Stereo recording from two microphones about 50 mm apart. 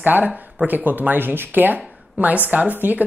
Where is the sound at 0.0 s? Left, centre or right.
Right.